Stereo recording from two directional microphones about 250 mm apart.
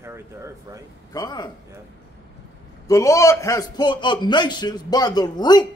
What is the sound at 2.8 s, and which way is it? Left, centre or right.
A man's voice, centre.